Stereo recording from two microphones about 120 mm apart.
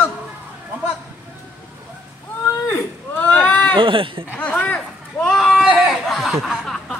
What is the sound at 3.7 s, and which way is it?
Speech, 45° right (ahead or behind).